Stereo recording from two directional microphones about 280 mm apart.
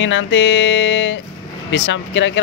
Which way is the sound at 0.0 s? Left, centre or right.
Left.